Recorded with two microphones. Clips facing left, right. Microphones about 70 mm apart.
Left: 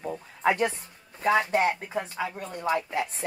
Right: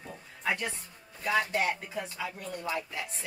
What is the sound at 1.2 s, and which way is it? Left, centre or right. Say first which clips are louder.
Speech: left 6 dB; left.